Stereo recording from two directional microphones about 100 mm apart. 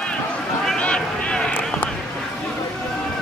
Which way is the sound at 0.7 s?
10° left (ahead or behind).